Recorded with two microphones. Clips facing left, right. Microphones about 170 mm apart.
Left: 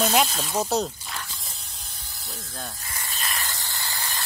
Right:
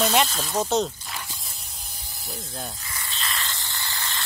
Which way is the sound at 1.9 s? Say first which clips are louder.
Right 4 dB; 15° right (ahead or behind).